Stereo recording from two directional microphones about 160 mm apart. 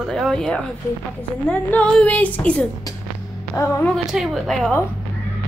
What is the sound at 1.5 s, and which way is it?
Music, 10° left (ahead or behind).